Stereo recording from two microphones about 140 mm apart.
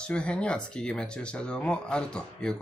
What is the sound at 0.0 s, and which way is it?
Speech, 5° left (ahead or behind).